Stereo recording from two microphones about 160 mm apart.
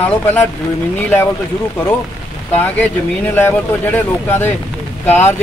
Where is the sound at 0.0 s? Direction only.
10° left (ahead or behind).